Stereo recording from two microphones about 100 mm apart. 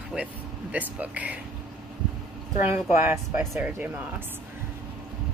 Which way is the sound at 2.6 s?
20° right (ahead or behind).